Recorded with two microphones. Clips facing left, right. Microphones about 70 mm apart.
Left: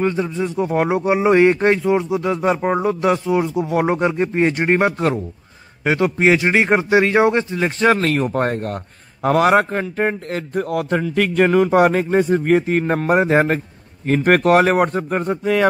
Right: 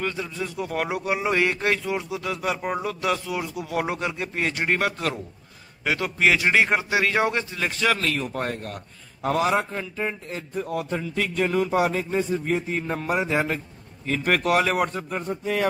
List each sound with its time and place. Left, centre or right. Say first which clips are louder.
0.0 s a man's voice: left 9 dB; left